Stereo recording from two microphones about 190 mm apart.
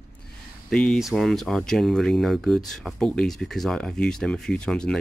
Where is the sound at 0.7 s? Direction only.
5° left (ahead or behind).